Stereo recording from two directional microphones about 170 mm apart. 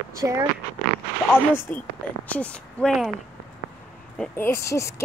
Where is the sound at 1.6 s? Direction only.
10° left (ahead or behind).